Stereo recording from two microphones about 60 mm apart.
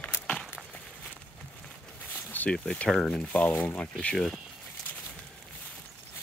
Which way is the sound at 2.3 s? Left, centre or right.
Left.